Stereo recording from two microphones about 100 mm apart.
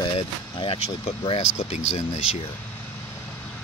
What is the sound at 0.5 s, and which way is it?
Speech, 65° left (ahead or behind).